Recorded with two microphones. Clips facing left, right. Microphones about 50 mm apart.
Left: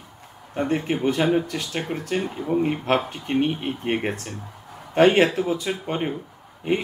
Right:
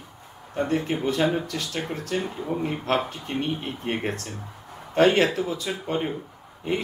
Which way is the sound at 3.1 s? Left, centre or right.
Left.